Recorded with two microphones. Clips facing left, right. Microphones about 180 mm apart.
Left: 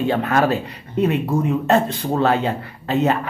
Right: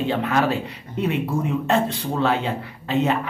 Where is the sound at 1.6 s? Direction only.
45° left (ahead or behind).